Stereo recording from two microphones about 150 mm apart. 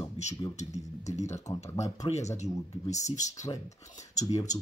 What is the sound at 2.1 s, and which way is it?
Speech, 50° left (ahead or behind).